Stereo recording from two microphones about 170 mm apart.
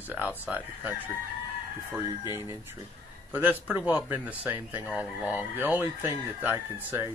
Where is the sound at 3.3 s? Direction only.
10° right (ahead or behind).